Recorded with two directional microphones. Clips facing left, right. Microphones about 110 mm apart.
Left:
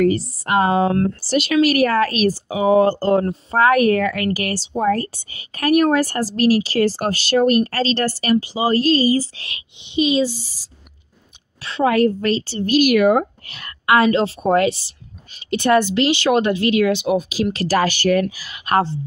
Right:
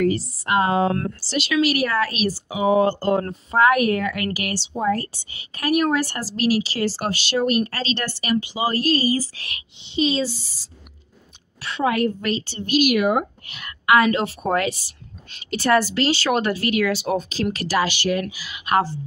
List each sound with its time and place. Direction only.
0.1 s a woman's voice: 45° left (ahead or behind)
4.7 s a woman's voice: 50° left (ahead or behind); by 10.7 s 15° left (ahead or behind)
11.6 s a woman's voice: 35° left (ahead or behind); by 17.5 s 10° left (ahead or behind)
17.6 s a woman's voice: 45° left (ahead or behind)